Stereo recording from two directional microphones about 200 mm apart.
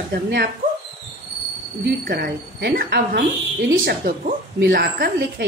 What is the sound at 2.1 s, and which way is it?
A woman's voice, 50° right (ahead or behind).